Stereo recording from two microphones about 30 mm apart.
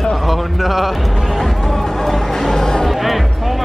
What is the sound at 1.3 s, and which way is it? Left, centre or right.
Music, centre.